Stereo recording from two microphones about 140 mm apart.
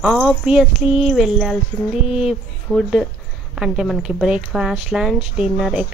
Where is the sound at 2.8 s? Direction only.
Centre (ahead or behind).